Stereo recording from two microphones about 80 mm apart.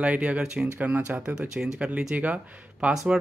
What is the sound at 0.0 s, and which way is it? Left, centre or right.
Speech, centre.